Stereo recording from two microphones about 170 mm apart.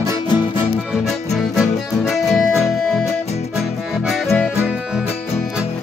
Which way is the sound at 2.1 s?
Centre (ahead or behind).